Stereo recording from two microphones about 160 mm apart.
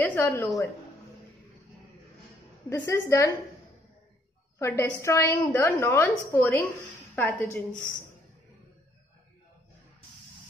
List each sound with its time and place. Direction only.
0.0 s speech: 15° left (ahead or behind)
2.7 s a woman's voice: 15° left (ahead or behind)
4.6 s a woman's voice: 20° left (ahead or behind)